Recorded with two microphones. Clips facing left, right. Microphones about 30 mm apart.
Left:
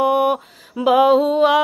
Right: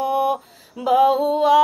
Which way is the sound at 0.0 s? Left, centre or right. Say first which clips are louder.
Left 4 dB; left.